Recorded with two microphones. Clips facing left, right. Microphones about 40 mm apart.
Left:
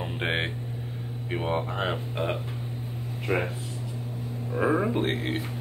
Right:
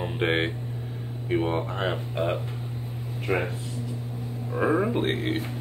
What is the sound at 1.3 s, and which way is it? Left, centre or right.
Speech, centre.